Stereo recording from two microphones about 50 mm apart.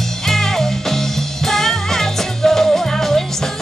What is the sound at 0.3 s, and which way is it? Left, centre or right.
Music, centre.